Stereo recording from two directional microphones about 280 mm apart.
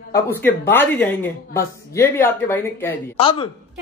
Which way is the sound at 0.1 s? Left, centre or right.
Centre.